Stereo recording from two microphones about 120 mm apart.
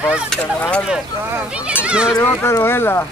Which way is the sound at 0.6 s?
10° left (ahead or behind).